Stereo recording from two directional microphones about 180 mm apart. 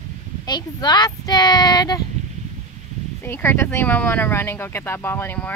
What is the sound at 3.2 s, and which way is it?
Speech, 10° left (ahead or behind).